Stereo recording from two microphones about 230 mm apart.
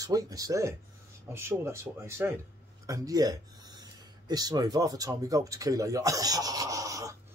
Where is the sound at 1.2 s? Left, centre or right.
Centre.